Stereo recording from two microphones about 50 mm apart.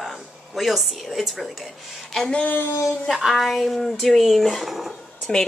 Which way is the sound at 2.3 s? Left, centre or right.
Left.